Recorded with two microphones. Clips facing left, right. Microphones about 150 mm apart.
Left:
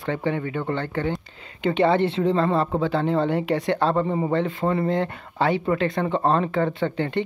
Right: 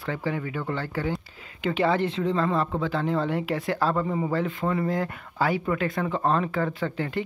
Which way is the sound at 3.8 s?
30° left (ahead or behind).